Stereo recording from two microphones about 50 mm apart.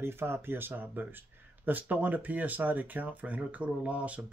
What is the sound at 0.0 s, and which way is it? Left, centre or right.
Speech, right.